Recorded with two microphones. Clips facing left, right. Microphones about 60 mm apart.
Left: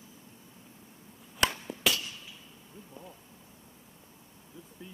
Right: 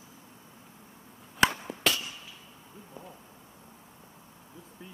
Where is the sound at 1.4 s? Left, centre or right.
Centre.